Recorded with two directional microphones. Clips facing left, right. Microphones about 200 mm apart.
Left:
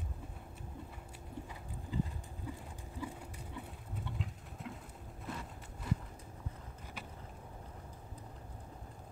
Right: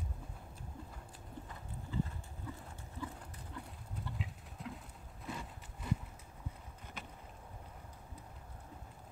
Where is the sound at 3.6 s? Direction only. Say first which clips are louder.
Left 1 dB; centre (ahead or behind).